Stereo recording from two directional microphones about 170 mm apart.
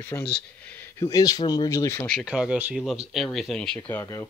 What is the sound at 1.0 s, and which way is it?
Speech, 20° left (ahead or behind).